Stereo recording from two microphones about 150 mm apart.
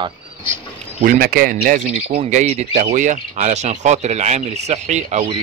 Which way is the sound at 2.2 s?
50° right (ahead or behind).